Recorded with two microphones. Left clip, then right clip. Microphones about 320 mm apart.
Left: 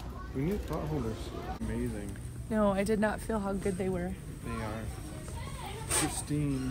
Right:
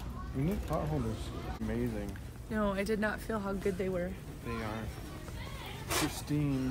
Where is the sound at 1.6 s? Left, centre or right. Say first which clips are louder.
Right 3 dB; right.